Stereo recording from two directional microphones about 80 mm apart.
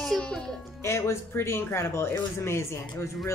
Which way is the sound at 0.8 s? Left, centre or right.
Left.